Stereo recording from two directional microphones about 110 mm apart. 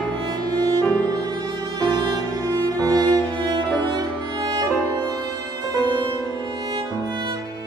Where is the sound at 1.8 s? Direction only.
45° right (ahead or behind).